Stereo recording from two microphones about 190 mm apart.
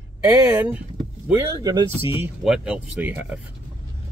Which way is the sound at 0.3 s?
10° right (ahead or behind).